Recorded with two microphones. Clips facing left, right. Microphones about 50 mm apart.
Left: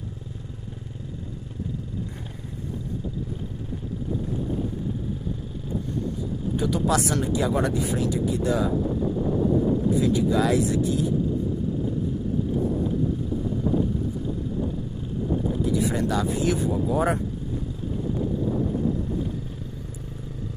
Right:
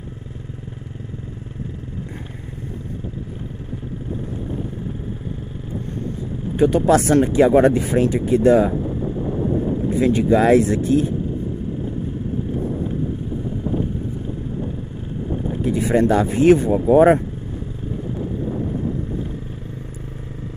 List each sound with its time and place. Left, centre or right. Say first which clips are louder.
6.5 s speech: right 9 dB; right
9.8 s speech: right 5 dB; right
15.6 s speech: right 10 dB; right